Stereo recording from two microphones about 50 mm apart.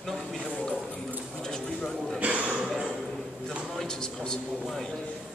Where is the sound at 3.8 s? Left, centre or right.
Centre.